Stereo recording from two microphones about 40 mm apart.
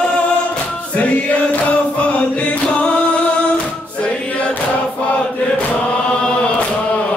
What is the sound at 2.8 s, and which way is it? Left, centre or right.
Music, left.